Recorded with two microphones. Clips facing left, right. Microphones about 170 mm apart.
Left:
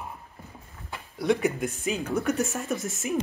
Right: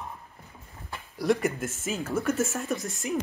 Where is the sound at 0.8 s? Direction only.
Centre (ahead or behind).